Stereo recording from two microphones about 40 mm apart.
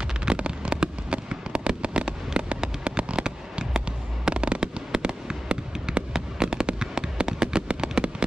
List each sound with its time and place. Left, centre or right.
0.2 s fireworks: right